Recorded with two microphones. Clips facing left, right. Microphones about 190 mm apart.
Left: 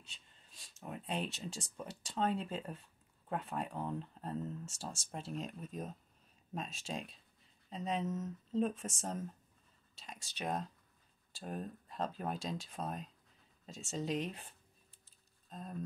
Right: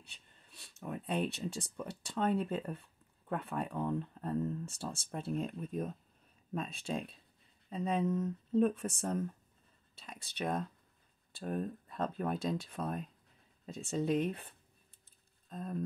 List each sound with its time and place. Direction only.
0.0 s speech: 60° right (ahead or behind)